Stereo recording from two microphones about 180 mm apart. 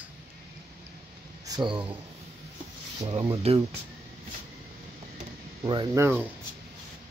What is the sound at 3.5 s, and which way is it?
Speech, 35° right (ahead or behind).